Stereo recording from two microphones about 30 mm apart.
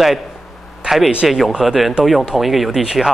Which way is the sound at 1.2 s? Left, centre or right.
Centre.